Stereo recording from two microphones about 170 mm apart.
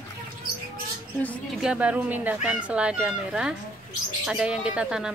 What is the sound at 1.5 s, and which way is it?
Speech, 5° right (ahead or behind).